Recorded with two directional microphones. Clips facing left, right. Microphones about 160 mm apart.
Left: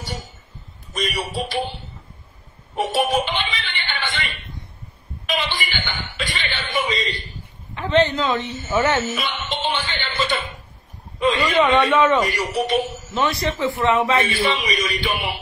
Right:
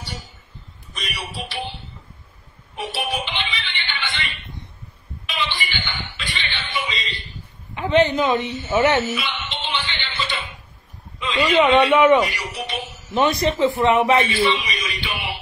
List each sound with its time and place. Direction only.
0.0 s a sound: 45° left (ahead or behind)
0.9 s speech: 45° left (ahead or behind)
2.7 s a sound: 45° left (ahead or behind)
5.2 s cough: 45° left (ahead or behind)
7.7 s a man's voice: 15° right (ahead or behind)
9.1 s music: 45° left (ahead or behind)
11.3 s a man's voice: 15° right (ahead or behind)
12.3 s a man's voice: 45° left (ahead or behind)
13.1 s a man's voice: 20° right (ahead or behind)
14.2 s a man's voice: 45° left (ahead or behind)